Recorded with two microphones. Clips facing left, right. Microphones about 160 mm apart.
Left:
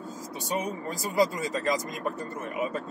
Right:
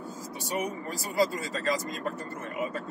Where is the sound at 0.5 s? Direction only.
20° left (ahead or behind).